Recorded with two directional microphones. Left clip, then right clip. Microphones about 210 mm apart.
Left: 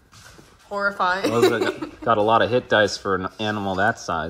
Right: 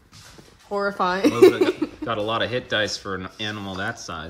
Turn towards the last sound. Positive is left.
turn(degrees=0)  # may be behind; listen again after turning